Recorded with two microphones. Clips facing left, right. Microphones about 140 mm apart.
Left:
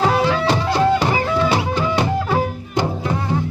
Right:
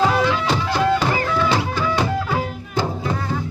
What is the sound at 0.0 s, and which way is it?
Music, 30° left (ahead or behind).